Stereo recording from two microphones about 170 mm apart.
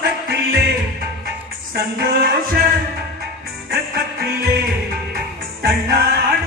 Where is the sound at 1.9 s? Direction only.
65° right (ahead or behind).